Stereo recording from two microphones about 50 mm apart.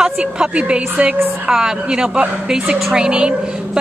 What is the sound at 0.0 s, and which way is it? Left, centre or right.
A woman's voice, centre.